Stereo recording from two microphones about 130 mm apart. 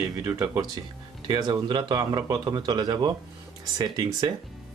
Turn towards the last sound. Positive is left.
turn(degrees=-30)  # may be behind; listen again after turning